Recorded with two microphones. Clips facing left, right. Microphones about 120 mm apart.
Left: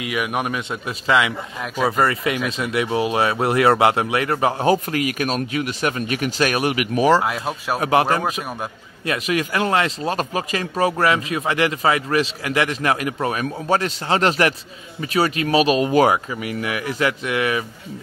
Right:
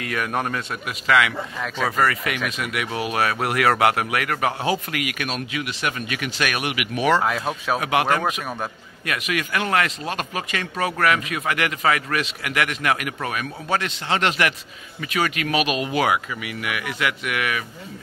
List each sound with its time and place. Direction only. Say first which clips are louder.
0.0 s a man's voice: left 2 dB; 15° left (ahead or behind)
0.8 s speech: left 1 dB; 25° left (ahead or behind)
7.2 s speech: left 1 dB; 5° left (ahead or behind)
7.8 s speech: left 4 dB; 35° left (ahead or behind)